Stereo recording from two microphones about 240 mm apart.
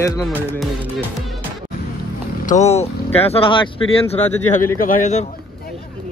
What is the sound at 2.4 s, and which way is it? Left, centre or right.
Speech, left.